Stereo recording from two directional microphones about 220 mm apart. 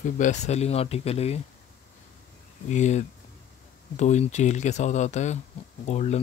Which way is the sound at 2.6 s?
30° left (ahead or behind).